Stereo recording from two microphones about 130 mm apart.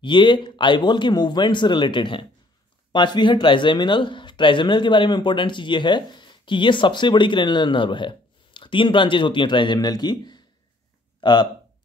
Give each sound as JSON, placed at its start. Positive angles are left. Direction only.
{"t": 0.0, "sound": "speech", "side_deg": 35}